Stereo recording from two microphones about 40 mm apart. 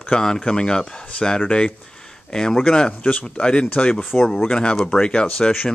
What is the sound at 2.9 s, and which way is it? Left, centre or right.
Speech, left.